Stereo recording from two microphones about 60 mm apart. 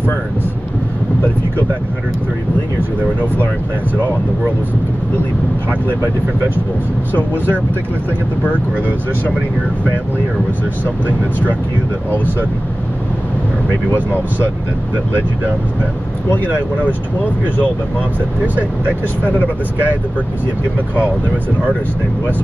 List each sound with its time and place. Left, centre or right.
7.1 s speech: left
16.8 s speech: left
19.2 s speech: left